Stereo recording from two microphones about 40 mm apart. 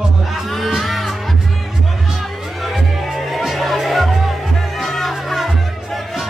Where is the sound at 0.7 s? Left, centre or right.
Centre.